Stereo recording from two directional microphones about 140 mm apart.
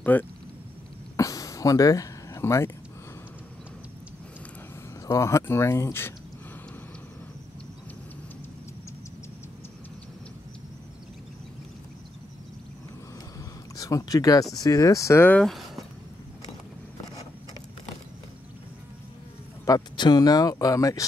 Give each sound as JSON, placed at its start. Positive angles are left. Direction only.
{"t": 0.0, "sound": "speech", "side_deg": 10}
{"t": 1.1, "sound": "a sound", "side_deg": 25}
{"t": 5.0, "sound": "speech", "side_deg": 20}
{"t": 13.7, "sound": "speech", "side_deg": 25}
{"t": 15.4, "sound": "speech", "side_deg": 0}
{"t": 19.6, "sound": "speech", "side_deg": 30}